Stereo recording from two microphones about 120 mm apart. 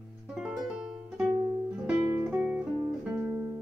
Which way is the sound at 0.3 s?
5° right (ahead or behind).